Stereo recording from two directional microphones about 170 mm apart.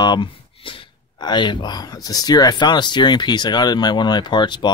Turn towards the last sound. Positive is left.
turn(degrees=25)  # may be behind; listen again after turning